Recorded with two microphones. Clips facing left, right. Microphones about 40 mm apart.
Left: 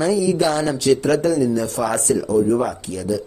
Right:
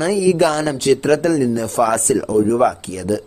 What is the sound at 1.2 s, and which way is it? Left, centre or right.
Speech, right.